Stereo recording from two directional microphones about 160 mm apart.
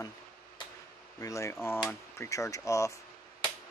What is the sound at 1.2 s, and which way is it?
Speech, 20° left (ahead or behind).